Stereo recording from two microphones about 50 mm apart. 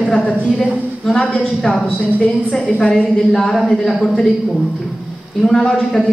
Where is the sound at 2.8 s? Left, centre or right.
Centre.